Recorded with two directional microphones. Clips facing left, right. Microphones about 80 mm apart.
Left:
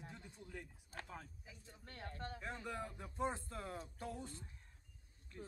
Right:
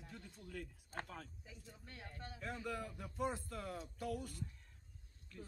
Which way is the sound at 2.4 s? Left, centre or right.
Left.